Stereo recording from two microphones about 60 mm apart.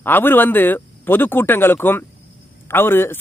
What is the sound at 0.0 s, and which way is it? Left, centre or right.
Speech, left.